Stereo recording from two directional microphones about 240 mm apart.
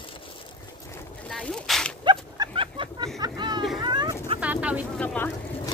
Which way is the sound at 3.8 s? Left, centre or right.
Centre.